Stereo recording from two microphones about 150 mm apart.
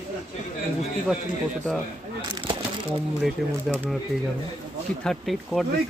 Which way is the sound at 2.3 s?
30° right (ahead or behind).